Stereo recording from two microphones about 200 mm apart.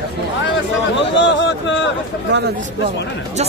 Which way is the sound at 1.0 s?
65° left (ahead or behind).